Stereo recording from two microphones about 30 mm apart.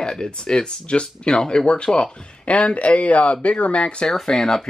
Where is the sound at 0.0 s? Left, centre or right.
Left.